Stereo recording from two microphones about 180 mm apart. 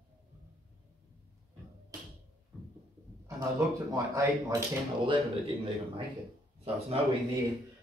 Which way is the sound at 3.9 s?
15° right (ahead or behind).